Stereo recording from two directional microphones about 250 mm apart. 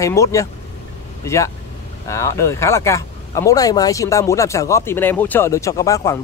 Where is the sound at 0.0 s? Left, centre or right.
Centre.